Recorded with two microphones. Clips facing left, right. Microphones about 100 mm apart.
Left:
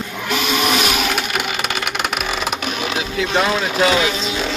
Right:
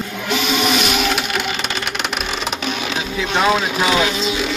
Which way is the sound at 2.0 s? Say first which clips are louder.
Left 2 dB; 45° left (ahead or behind).